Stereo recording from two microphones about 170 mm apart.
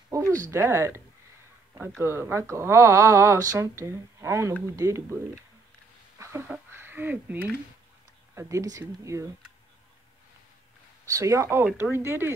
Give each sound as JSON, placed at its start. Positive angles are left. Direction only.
{"t": 0.4, "sound": "speech", "side_deg": -15}
{"t": 6.1, "sound": "a sound", "side_deg": -15}
{"t": 8.4, "sound": "speech", "side_deg": -20}
{"t": 11.1, "sound": "speech", "side_deg": -20}